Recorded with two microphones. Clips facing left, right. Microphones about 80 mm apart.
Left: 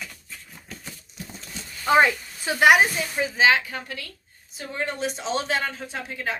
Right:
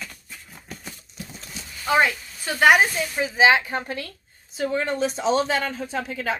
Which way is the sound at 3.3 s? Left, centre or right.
Centre.